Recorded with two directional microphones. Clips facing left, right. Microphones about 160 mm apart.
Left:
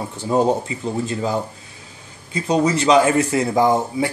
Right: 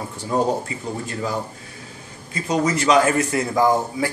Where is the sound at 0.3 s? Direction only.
25° left (ahead or behind).